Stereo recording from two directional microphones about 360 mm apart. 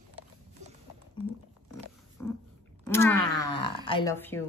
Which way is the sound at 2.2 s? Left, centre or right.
Centre.